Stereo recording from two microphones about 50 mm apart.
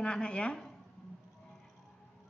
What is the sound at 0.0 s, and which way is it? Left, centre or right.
Speech, centre.